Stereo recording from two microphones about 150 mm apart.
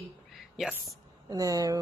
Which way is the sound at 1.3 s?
25° right (ahead or behind).